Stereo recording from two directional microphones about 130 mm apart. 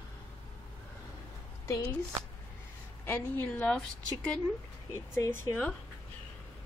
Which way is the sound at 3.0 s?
15° left (ahead or behind).